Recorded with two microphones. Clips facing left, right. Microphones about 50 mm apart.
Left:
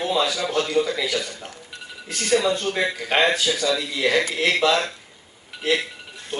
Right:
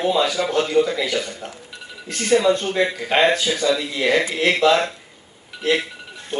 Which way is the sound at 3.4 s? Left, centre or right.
Right.